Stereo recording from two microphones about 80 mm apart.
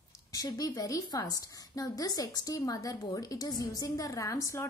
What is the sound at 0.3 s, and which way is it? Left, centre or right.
A woman's voice, left.